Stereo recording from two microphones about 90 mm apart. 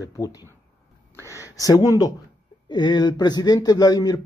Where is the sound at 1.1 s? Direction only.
30° right (ahead or behind).